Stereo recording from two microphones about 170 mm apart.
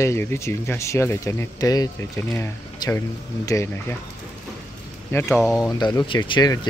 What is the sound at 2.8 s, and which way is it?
Speech, 25° left (ahead or behind).